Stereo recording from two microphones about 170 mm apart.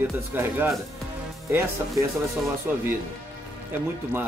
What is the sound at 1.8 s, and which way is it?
Speech, 15° right (ahead or behind).